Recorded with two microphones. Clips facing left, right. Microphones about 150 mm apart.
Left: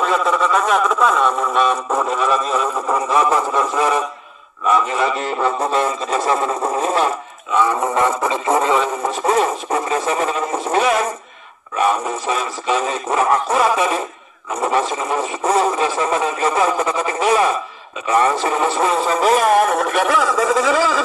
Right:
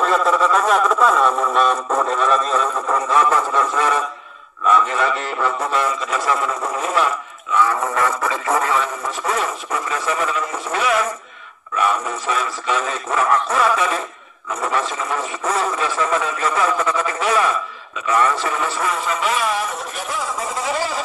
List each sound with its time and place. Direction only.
0.0 s a man's voice: centre (ahead or behind); by 21.0 s 90° left